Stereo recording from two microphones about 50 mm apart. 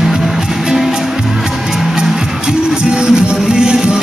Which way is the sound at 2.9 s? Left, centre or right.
Centre.